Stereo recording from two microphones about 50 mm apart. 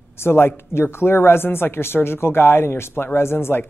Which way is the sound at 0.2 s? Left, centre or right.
Left.